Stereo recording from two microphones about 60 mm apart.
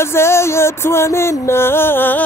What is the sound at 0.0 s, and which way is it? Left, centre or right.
Music, left.